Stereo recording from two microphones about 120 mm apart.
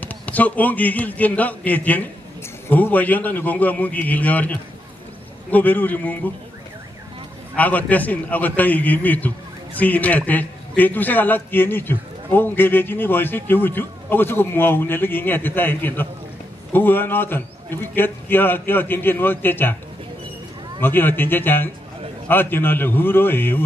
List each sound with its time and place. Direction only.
0.0 s a man's voice: 15° left (ahead or behind)
7.5 s a man's voice: 15° left (ahead or behind)
20.8 s a man's voice: 15° left (ahead or behind)